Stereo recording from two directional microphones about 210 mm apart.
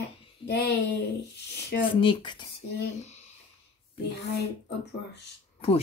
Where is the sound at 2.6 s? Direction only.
55° left (ahead or behind).